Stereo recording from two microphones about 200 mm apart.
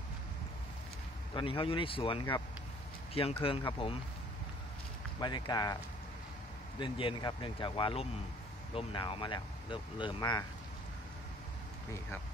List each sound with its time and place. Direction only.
1.3 s speech: 25° left (ahead or behind)
5.2 s speech: 20° left (ahead or behind)
6.8 s speech: 25° left (ahead or behind)